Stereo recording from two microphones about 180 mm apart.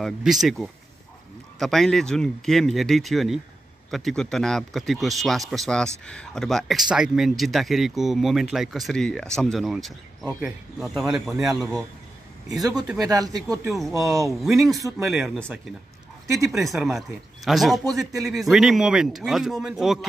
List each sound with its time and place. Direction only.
0.0 s a man's voice: centre (ahead or behind)
13.1 s speech: 20° right (ahead or behind)
13.7 s a man's voice: centre (ahead or behind)
14.7 s a man's voice: 20° right (ahead or behind)
15.0 s a man's voice: centre (ahead or behind)
16.5 s a man's voice: centre (ahead or behind)